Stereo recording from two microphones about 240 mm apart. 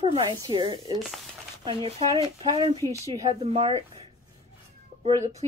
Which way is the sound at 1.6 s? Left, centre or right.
Right.